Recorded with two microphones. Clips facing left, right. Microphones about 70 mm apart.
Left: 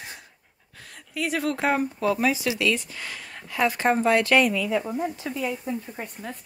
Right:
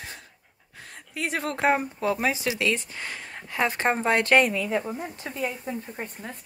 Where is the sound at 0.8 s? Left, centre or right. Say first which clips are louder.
Left 2 dB; right.